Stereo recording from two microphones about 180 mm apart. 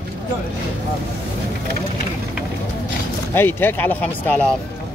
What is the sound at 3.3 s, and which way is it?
Speech, 10° left (ahead or behind).